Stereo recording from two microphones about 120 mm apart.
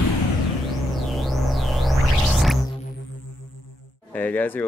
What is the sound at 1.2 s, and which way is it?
Music, centre (ahead or behind).